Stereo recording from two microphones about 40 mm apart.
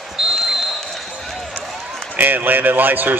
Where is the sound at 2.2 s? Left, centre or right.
Right.